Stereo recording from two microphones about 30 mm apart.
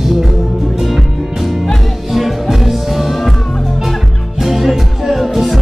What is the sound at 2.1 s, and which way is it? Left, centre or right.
Music, centre.